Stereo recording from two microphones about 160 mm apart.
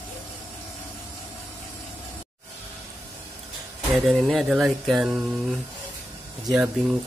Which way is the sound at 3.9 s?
Centre (ahead or behind).